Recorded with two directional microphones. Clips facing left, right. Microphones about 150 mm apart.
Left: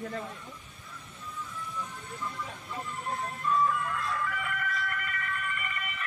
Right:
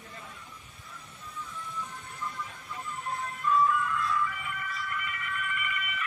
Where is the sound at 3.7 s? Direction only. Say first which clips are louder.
Right 2 dB; 45° left (ahead or behind).